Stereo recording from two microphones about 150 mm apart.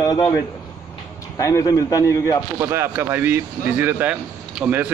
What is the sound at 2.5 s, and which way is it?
Speech, 15° right (ahead or behind).